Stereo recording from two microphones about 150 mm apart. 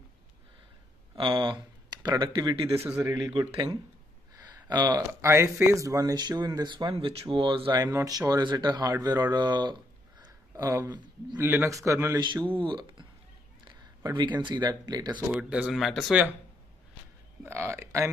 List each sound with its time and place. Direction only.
1.1 s speech: 35° right (ahead or behind)
2.8 s a man's voice: 15° right (ahead or behind)
3.3 s speech: 30° right (ahead or behind)
10.2 s a sound: 20° right (ahead or behind)
11.3 s a man's voice: 15° right (ahead or behind)
12.3 s speech: 35° right (ahead or behind)
15.5 s speech: 5° right (ahead or behind)
17.4 s speech: 15° right (ahead or behind)